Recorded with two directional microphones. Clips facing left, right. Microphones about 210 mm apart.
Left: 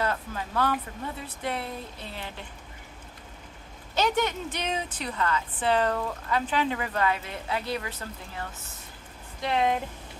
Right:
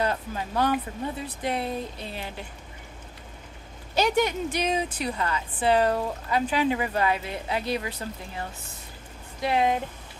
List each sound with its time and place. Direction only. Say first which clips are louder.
0.0 s speech: right 2 dB; 20° right (ahead or behind)
3.9 s speech: right 3 dB; 10° right (ahead or behind)
9.4 s speech: right 2 dB; 5° right (ahead or behind)